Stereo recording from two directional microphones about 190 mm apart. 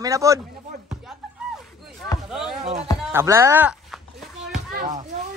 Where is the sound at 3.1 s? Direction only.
15° right (ahead or behind).